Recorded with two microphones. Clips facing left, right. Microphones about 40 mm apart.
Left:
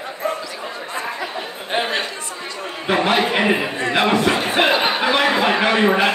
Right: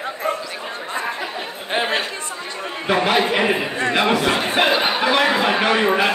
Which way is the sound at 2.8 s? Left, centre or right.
Centre.